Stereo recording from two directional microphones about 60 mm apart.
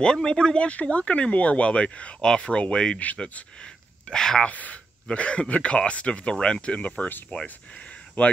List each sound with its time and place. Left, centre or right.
0.0 s speech: centre
4.5 s speech: left